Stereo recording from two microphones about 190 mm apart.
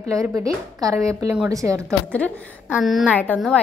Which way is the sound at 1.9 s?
5° left (ahead or behind).